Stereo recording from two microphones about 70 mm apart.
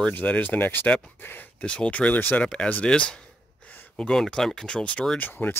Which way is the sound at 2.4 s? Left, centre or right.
Centre.